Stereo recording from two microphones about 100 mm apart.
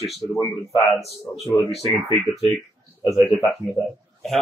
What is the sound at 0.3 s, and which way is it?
Speech, 30° left (ahead or behind).